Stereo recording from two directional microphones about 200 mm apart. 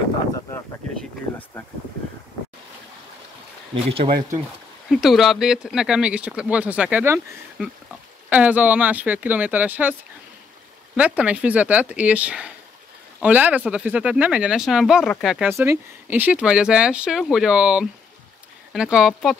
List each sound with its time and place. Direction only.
3.7 s speech: 30° right (ahead or behind)
4.8 s speech: centre (ahead or behind)
11.0 s speech: 5° right (ahead or behind)
15.5 s speech: 10° right (ahead or behind)